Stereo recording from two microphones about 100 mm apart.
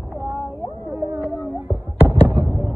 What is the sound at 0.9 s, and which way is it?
Fireworks, 20° right (ahead or behind).